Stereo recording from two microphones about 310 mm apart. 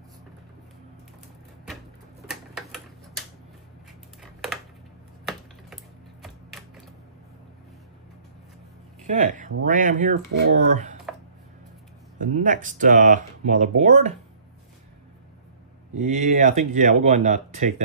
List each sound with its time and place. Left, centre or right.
2.2 s typewriter: centre
4.2 s a sound: centre
9.0 s speech: right
12.2 s speech: right
16.0 s speech: right